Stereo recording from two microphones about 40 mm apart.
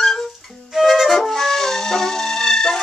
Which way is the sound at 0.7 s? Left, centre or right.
Centre.